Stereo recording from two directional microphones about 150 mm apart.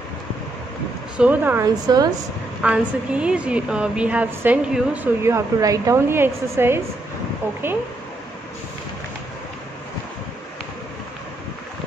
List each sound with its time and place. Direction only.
1.1 s a woman's voice: 10° right (ahead or behind)
1.9 s speech: 25° right (ahead or behind)
2.6 s a woman's voice: 5° right (ahead or behind)